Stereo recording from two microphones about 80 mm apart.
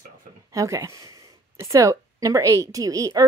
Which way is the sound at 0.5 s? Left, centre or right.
Right.